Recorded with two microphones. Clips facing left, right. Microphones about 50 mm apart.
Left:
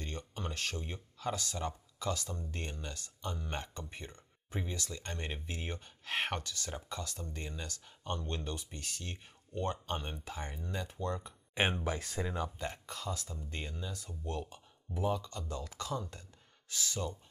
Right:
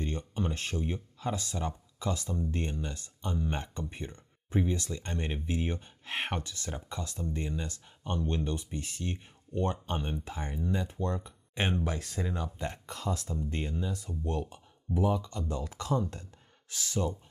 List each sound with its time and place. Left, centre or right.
0.0 s speech: right
11.5 s speech: centre
12.5 s speech: right